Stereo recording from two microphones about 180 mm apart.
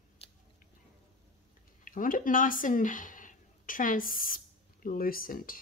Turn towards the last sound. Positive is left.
turn(degrees=50)  # may be behind; listen again after turning